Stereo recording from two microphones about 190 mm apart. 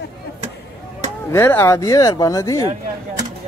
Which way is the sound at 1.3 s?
10° left (ahead or behind).